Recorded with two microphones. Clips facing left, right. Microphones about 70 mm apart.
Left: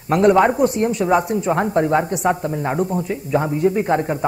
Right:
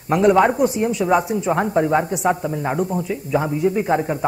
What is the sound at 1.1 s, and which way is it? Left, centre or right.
A man's voice, centre.